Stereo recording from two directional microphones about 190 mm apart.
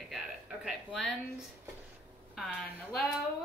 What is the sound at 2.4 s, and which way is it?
Speech, centre (ahead or behind).